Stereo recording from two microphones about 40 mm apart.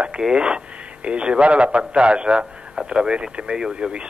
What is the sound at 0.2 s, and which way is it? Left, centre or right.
Speech, right.